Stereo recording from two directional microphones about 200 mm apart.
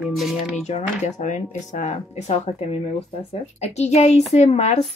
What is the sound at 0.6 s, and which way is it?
Speech, 35° left (ahead or behind).